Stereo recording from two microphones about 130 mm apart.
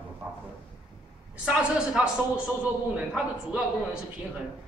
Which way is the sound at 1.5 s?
5° right (ahead or behind).